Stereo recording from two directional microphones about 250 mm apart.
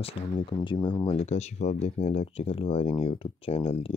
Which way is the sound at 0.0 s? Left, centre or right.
Left.